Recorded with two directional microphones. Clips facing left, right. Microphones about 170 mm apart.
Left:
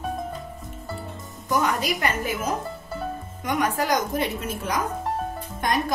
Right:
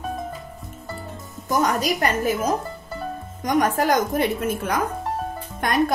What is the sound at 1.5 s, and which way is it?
A woman's voice, 40° right (ahead or behind).